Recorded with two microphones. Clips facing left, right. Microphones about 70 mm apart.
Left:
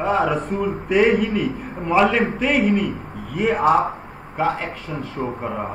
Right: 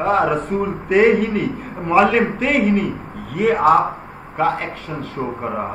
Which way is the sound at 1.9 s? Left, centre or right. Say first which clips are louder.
Right 3 dB; centre.